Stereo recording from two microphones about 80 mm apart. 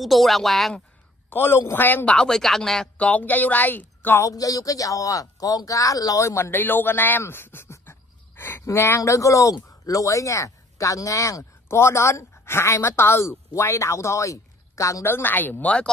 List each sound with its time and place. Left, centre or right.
0.0 s speech: centre
1.3 s speech: left
2.0 s speech: centre
3.1 s speech: centre
4.2 s speech: left
6.2 s speech: left
15.0 s speech: left